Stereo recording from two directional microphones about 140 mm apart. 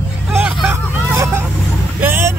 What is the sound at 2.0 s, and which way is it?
Vehicle, 15° right (ahead or behind).